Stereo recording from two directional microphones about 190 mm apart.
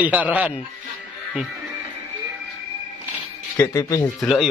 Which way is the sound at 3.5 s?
20° left (ahead or behind).